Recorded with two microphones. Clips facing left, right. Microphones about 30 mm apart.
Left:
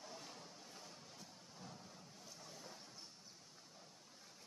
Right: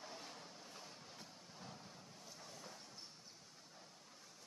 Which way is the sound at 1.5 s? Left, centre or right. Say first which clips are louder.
Right 1 dB; centre.